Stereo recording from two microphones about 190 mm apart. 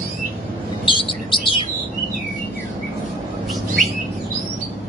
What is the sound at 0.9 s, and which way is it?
Bird, 25° left (ahead or behind).